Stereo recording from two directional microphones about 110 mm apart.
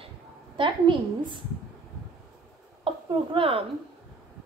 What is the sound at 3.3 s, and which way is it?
Speech, 55° right (ahead or behind).